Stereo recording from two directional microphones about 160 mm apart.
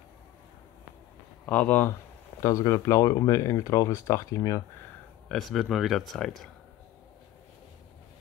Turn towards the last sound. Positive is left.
turn(degrees=5)  # may be behind; listen again after turning